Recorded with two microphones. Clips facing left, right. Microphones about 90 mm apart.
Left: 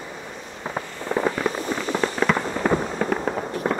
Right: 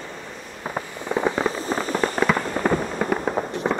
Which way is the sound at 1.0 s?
15° right (ahead or behind).